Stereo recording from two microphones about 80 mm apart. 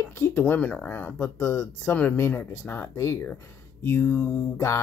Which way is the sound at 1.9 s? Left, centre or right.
Left.